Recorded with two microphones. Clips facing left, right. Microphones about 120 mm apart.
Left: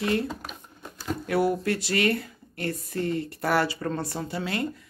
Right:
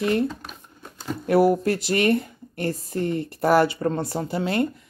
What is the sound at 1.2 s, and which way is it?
A woman's voice, 25° right (ahead or behind).